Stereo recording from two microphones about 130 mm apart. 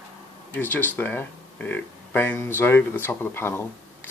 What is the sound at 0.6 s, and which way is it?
Speech, 15° left (ahead or behind).